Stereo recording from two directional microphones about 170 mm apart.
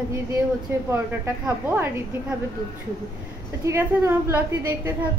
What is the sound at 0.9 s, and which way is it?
Speech, 10° right (ahead or behind).